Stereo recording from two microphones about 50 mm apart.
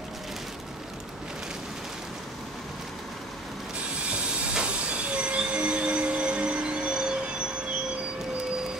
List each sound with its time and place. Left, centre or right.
4.6 s train: right